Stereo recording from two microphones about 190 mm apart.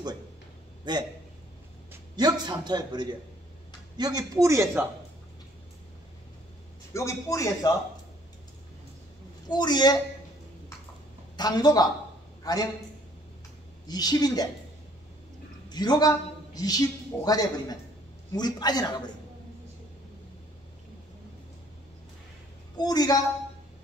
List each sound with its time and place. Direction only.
0.9 s a man's voice: 20° right (ahead or behind)
6.9 s speech: 15° left (ahead or behind)
9.5 s a woman's voice: 20° left (ahead or behind)
11.3 s a woman's voice: 20° left (ahead or behind)
13.8 s a woman's voice: 20° left (ahead or behind)
15.7 s a woman's voice: 20° left (ahead or behind)
22.8 s a woman's voice: 20° left (ahead or behind)